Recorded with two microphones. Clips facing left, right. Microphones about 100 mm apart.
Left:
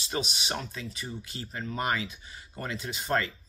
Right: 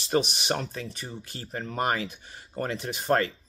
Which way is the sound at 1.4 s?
40° right (ahead or behind).